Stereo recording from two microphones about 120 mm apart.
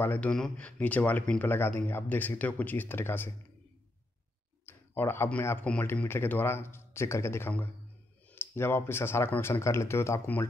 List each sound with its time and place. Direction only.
0.0 s speech: 10° left (ahead or behind)
4.6 s speech: 20° left (ahead or behind)